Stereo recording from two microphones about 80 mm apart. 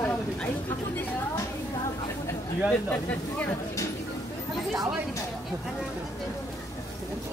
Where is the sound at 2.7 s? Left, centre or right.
Centre.